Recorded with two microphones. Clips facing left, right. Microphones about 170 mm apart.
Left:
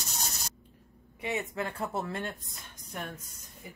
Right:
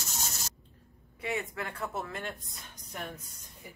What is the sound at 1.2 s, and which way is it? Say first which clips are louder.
Speech: left 2 dB; 20° left (ahead or behind).